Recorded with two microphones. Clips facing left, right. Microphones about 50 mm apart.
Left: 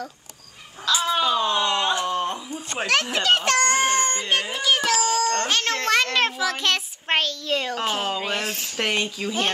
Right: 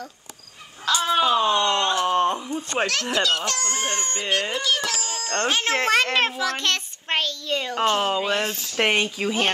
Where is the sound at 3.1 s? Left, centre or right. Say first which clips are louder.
Left 4 dB; left.